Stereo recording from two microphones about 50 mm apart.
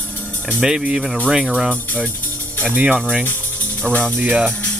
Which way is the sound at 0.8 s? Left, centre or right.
Right.